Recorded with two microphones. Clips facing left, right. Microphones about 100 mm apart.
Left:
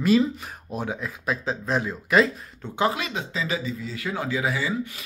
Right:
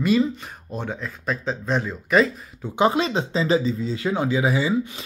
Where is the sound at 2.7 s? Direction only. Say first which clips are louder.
Right 5 dB; 25° right (ahead or behind).